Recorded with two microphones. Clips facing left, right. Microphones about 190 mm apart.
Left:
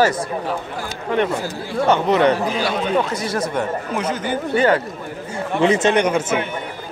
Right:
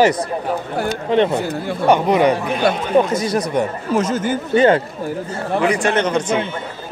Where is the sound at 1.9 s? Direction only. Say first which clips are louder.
Right 2 dB; 10° right (ahead or behind).